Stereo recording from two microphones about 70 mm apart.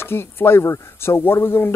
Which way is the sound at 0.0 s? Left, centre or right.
Left.